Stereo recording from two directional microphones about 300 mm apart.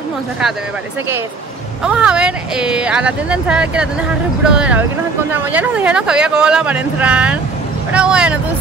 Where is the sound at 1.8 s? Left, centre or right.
Centre.